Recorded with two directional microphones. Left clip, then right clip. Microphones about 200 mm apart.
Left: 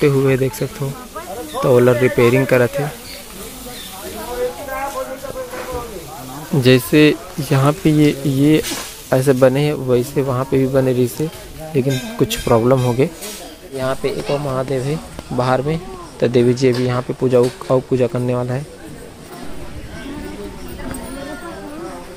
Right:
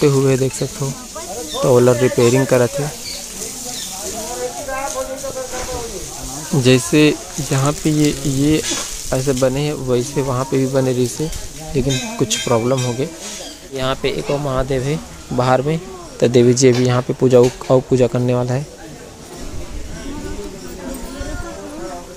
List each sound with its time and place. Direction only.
0.0 s speech: 5° right (ahead or behind)
1.7 s speech: 5° right (ahead or behind)
6.5 s speech: centre (ahead or behind)
13.7 s speech: 10° right (ahead or behind)